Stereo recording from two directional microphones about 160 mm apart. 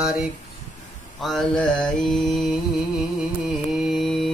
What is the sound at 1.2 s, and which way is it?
Mantra, centre (ahead or behind).